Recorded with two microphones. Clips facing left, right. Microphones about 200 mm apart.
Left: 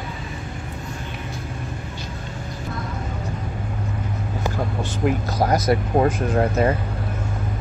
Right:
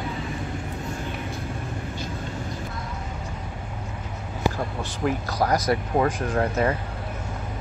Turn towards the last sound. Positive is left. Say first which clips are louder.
# left 4 dB
turn(degrees=25)  # may be behind; listen again after turning